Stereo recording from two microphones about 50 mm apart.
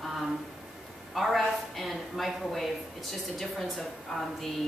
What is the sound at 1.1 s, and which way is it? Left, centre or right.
A woman's voice, centre.